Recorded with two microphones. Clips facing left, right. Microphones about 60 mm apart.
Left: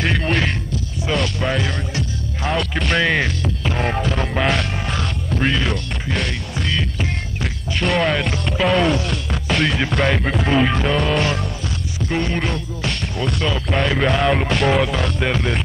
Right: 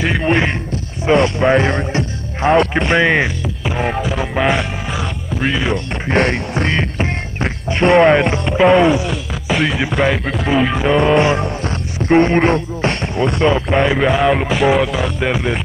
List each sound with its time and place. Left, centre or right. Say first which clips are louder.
0.0 s music: right 4 dB; centre
1.0 s music: right 9 dB; right
2.7 s speech: right 5 dB; right
3.4 s music: right 2 dB; centre
5.3 s speech: right 2 dB; centre
6.0 s music: right 10 dB; right
8.7 s speech: right 5 dB; centre
12.0 s speech: right 10 dB; right
13.4 s speech: right 7 dB; right; by 15.6 s centre